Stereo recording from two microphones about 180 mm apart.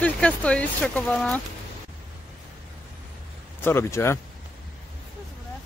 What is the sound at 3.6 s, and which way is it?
Speech, 15° left (ahead or behind).